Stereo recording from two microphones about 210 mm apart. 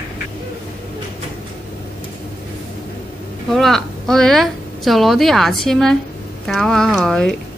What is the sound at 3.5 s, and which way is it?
A woman's voice, centre (ahead or behind).